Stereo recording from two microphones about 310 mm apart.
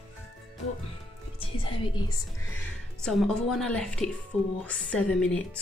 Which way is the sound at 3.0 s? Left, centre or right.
Centre.